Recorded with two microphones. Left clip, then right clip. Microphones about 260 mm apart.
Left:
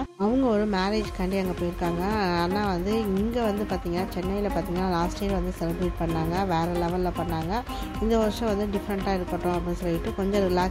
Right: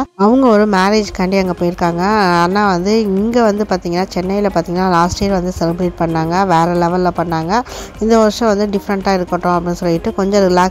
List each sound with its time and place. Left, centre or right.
0.2 s speech: right
8.1 s speech: right